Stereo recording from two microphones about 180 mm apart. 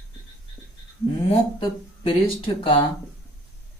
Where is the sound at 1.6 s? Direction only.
30° left (ahead or behind).